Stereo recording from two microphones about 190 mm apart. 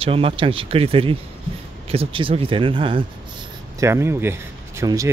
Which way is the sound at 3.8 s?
15° right (ahead or behind).